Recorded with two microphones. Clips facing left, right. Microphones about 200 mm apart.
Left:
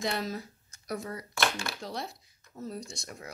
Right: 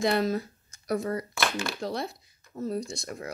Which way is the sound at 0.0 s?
60° right (ahead or behind).